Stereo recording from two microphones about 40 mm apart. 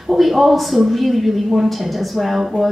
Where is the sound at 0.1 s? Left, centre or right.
Centre.